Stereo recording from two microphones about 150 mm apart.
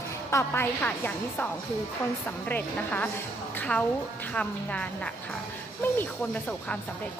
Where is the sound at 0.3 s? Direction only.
15° left (ahead or behind).